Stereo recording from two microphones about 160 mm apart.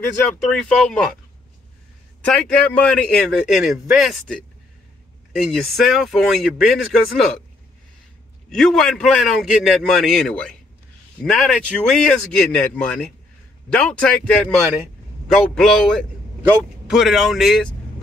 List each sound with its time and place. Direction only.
0.5 s a man's voice: 5° left (ahead or behind)
2.2 s a man's voice: 5° left (ahead or behind)
8.5 s a man's voice: centre (ahead or behind)